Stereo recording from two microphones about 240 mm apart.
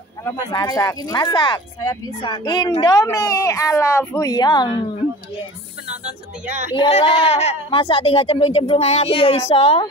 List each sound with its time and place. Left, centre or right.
0.2 s speech: centre
5.9 s speech: right
6.7 s speech: left